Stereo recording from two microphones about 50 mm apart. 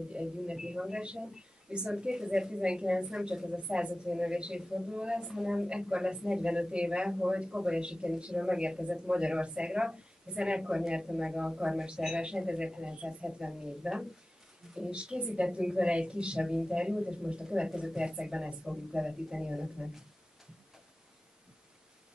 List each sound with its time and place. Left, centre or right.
0.1 s a woman's voice: centre